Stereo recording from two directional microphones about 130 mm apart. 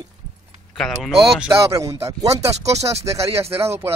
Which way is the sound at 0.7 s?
5° left (ahead or behind).